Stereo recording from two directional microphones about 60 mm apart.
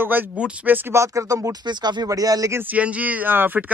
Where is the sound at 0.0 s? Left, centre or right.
Right.